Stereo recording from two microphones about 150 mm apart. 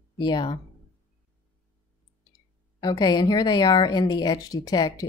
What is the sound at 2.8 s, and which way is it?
Speech, 25° left (ahead or behind).